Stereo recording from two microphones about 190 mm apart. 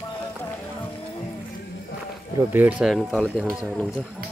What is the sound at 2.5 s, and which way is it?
Speech, 10° right (ahead or behind).